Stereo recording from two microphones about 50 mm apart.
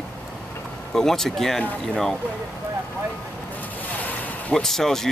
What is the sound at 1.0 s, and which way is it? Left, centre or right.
Speech, centre.